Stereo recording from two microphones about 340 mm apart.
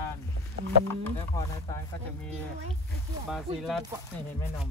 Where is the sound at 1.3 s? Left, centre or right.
Centre.